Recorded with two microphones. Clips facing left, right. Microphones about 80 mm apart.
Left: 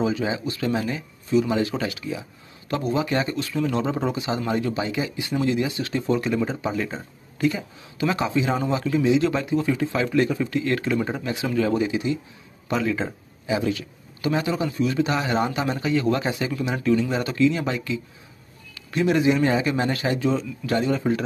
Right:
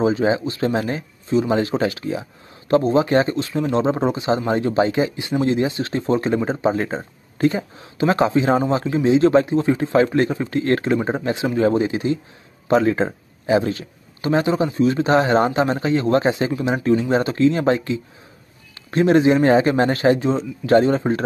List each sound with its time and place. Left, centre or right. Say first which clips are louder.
0.0 s speech: right 6 dB; right